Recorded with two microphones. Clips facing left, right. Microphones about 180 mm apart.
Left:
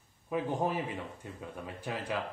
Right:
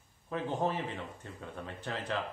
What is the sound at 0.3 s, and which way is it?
Speech, 10° left (ahead or behind).